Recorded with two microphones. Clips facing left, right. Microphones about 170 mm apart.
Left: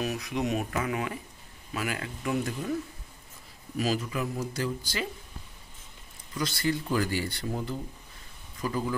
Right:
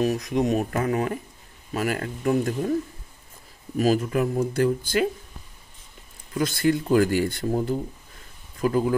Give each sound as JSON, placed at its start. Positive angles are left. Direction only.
{"t": 0.0, "sound": "speech", "side_deg": -40}
{"t": 6.3, "sound": "speech", "side_deg": -50}